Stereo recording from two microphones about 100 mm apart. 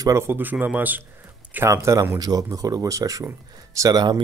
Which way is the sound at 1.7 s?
30° right (ahead or behind).